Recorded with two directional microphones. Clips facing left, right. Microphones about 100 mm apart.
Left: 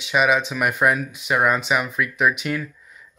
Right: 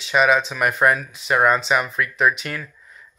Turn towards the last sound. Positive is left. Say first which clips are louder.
# left 5 dB
turn(degrees=5)  # may be behind; listen again after turning